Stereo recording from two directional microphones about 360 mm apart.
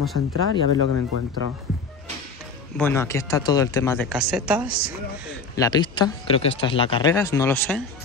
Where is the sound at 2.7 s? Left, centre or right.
Centre.